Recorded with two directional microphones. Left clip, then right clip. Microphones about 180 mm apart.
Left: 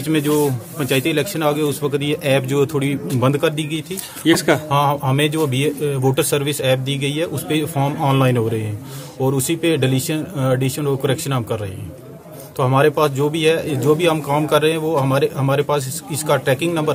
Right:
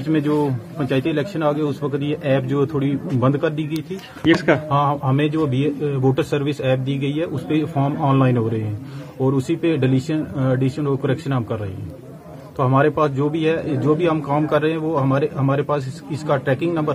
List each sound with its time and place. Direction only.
0.1 s a man's voice: 20° left (ahead or behind)